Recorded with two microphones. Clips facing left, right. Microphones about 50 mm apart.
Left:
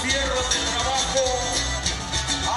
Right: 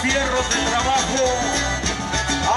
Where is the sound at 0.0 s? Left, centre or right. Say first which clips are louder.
Right 4 dB; right.